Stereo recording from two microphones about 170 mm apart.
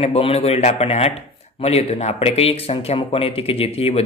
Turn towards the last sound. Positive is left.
turn(degrees=35)  # may be behind; listen again after turning